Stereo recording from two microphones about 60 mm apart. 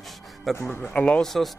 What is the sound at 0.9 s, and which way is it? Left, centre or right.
Speech, left.